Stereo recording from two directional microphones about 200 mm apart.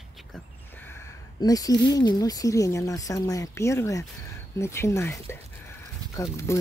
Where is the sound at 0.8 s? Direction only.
15° left (ahead or behind).